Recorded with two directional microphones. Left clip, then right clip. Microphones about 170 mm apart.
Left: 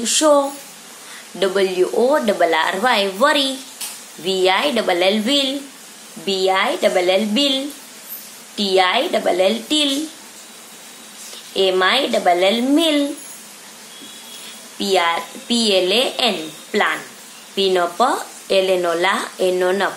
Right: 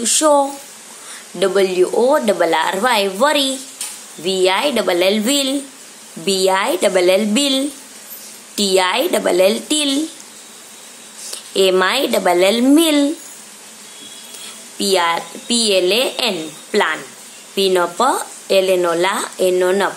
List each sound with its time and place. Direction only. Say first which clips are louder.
0.0 s a woman's voice: right 1 dB; 20° right (ahead or behind)
1.4 s a woman's voice: right 3 dB; 20° right (ahead or behind)
11.5 s a woman's voice: right 1 dB; 35° right (ahead or behind)
14.8 s a woman's voice: right 1 dB; 25° right (ahead or behind)